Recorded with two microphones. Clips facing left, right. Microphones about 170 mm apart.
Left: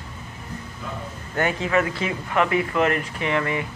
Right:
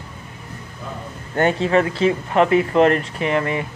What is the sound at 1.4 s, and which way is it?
Speech, 30° right (ahead or behind).